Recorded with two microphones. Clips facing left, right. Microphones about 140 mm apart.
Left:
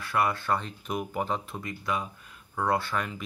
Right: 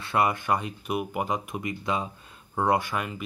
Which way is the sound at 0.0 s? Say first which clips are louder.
Right 2 dB; 20° right (ahead or behind).